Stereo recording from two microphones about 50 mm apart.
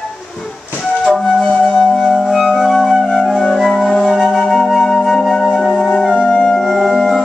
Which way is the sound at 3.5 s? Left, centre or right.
Centre.